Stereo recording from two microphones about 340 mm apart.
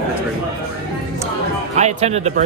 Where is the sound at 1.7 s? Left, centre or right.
Centre.